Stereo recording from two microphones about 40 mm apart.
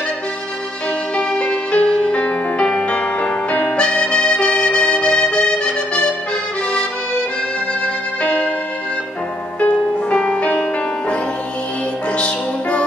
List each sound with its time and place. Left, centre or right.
1.1 s music: left
8.2 s music: left
9.6 s music: left